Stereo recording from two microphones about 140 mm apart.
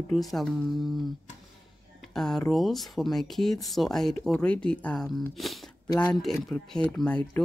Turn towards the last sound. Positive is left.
turn(degrees=10)  # may be behind; listen again after turning